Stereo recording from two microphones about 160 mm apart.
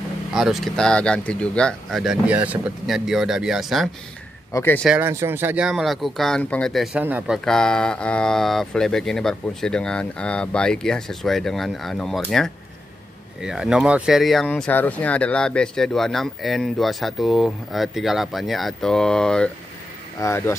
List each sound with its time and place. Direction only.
0.3 s speech: centre (ahead or behind)
4.5 s speech: 20° left (ahead or behind)
4.9 s speech: 15° right (ahead or behind); by 7.0 s centre (ahead or behind)
7.0 s speech: 10° right (ahead or behind)
7.4 s speech: 5° left (ahead or behind)
20.2 s speech: 15° left (ahead or behind)